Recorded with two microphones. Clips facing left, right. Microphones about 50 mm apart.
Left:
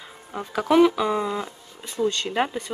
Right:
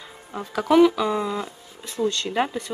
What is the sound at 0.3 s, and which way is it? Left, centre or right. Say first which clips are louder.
Speech: right 1 dB; centre.